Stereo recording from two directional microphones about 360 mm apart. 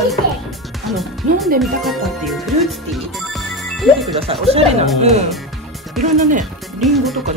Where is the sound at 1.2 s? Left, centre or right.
Centre.